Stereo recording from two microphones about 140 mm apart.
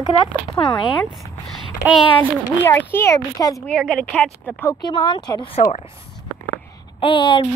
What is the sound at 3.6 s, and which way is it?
A woman's voice, 5° left (ahead or behind).